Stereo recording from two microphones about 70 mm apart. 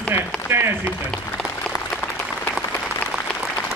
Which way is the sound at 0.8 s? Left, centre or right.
Centre.